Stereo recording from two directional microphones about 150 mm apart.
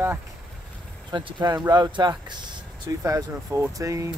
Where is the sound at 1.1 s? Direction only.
25° right (ahead or behind).